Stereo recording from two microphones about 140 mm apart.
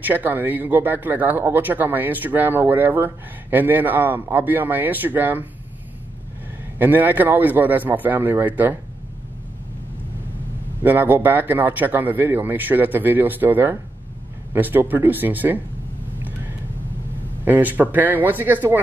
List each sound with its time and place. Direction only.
0.0 s speech: 15° right (ahead or behind)
6.8 s speech: 15° right (ahead or behind)
10.8 s speech: 15° right (ahead or behind)
17.5 s speech: 10° right (ahead or behind)